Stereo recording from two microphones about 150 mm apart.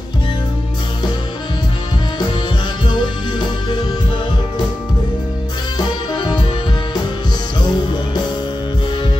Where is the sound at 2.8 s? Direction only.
30° left (ahead or behind).